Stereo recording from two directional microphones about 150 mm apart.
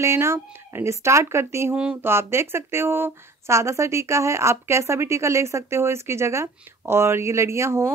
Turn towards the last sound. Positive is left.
turn(degrees=-20)  # may be behind; listen again after turning